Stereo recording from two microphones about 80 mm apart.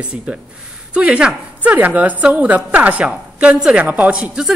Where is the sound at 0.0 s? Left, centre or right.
Centre.